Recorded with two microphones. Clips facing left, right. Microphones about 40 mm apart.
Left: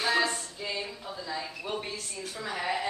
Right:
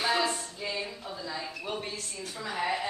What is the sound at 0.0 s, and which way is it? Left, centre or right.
Speech, centre.